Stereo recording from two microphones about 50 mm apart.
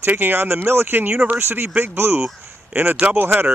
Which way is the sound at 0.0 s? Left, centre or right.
Right.